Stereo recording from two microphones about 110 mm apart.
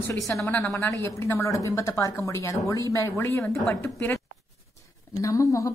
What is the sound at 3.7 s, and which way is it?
Speech, 20° left (ahead or behind).